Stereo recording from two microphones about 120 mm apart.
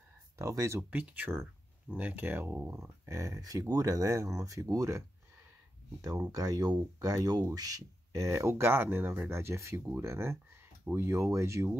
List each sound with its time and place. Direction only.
0.4 s speech: 25° right (ahead or behind)
0.8 s speech: 10° right (ahead or behind)